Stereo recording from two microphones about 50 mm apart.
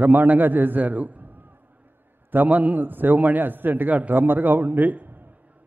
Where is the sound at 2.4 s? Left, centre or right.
Right.